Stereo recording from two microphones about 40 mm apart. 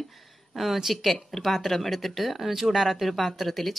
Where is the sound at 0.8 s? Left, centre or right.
Centre.